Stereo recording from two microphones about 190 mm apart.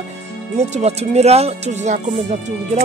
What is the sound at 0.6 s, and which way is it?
Speech, 35° right (ahead or behind).